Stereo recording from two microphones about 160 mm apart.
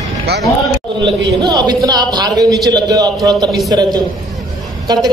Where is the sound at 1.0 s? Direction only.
25° right (ahead or behind).